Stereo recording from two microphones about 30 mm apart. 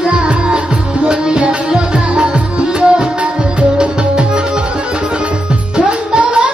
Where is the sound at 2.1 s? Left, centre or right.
Right.